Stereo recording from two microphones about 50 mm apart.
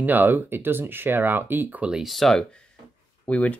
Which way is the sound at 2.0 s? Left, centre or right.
Centre.